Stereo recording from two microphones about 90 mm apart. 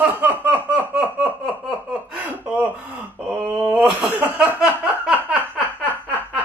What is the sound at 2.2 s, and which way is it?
Gasp, 15° right (ahead or behind).